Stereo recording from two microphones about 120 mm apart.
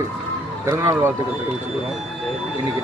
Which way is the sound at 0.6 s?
25° right (ahead or behind).